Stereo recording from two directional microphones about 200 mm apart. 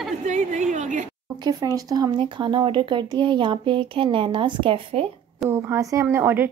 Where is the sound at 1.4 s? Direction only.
20° right (ahead or behind).